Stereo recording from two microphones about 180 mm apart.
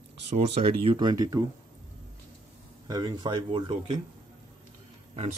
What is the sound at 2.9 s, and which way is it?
Speech, 25° right (ahead or behind).